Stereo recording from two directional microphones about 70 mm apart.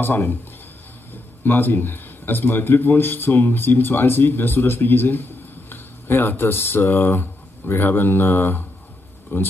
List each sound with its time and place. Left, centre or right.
0.0 s a man's voice: left